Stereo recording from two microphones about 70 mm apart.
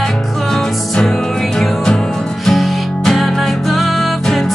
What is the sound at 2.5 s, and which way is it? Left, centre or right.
Music, centre.